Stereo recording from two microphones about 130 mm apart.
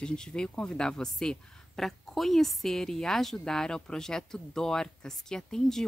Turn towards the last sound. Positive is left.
turn(degrees=5)  # may be behind; listen again after turning